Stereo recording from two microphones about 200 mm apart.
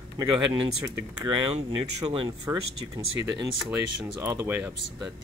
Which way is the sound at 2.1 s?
25° right (ahead or behind).